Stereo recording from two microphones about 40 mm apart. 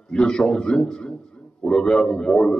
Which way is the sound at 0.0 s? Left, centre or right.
Centre.